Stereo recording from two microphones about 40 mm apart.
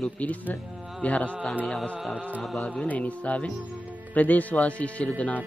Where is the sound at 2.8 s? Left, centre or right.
Left.